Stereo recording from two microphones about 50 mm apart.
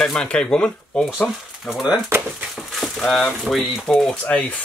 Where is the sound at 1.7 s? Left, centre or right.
Centre.